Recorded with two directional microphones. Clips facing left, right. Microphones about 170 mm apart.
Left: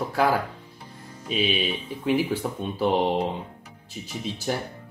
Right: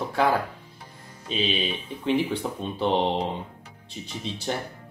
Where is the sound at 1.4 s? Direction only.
25° right (ahead or behind).